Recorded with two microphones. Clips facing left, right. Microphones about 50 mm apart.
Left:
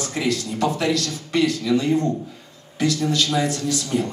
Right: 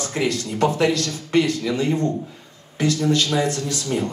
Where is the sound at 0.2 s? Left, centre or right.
Right.